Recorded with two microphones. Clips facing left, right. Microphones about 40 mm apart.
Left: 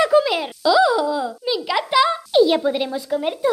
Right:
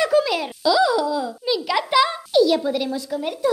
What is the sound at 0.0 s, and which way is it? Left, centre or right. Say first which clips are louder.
A child's voice: left 2 dB; centre.